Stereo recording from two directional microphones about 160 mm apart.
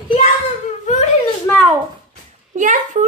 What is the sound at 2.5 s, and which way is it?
Speech, 50° right (ahead or behind).